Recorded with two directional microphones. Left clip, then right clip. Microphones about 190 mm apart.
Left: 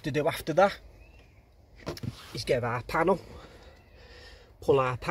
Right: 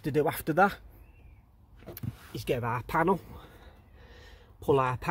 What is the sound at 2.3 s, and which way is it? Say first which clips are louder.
Speech: left 3 dB; 40° right (ahead or behind).